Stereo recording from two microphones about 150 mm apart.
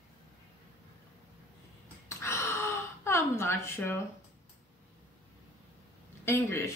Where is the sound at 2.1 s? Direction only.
20° left (ahead or behind).